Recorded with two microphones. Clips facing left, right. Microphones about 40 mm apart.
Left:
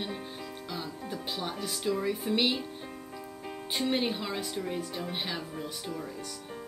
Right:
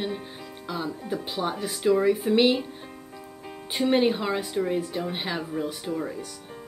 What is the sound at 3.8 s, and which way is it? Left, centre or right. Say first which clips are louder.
Speech: right 8 dB; centre.